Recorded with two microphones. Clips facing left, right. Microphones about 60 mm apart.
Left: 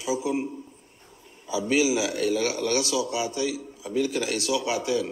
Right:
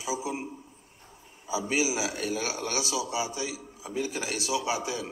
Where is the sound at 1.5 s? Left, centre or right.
Right.